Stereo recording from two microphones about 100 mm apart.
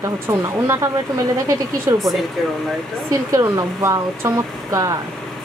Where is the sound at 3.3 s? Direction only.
35° right (ahead or behind).